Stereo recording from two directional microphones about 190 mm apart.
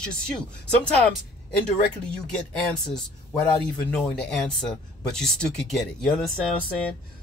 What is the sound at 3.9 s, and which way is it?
Speech, 5° left (ahead or behind).